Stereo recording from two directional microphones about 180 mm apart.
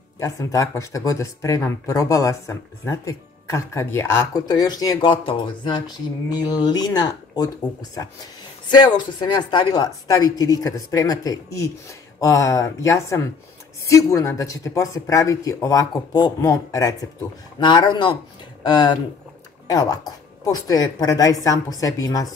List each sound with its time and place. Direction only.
0.2 s speech: 20° left (ahead or behind)